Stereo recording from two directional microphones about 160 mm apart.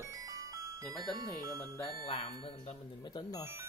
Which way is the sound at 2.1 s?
35° left (ahead or behind).